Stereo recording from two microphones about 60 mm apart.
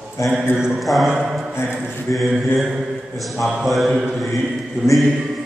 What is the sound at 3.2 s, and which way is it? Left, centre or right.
A man's voice, centre.